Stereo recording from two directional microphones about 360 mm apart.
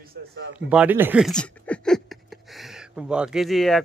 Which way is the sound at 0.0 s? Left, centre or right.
Right.